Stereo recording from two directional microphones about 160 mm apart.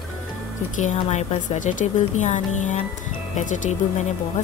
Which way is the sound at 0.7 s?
50° left (ahead or behind).